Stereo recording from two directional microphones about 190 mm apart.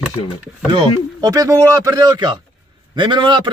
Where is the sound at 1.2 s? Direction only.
20° right (ahead or behind).